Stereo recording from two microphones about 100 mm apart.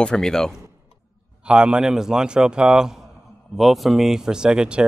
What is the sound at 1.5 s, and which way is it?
A man's voice, 10° right (ahead or behind).